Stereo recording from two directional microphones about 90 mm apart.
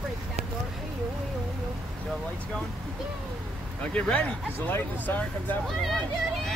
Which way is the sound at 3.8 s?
10° left (ahead or behind).